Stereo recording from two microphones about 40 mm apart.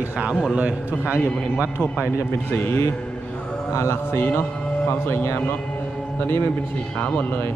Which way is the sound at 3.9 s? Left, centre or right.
Left.